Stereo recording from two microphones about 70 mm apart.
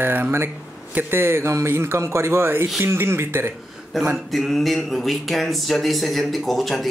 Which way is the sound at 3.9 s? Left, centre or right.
Centre.